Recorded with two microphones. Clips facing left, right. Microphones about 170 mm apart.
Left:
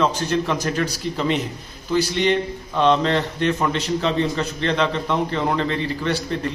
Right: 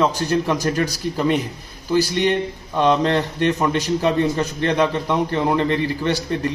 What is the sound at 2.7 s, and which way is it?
A man's voice, 15° right (ahead or behind).